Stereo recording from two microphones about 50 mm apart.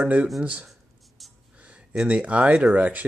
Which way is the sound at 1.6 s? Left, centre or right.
Right.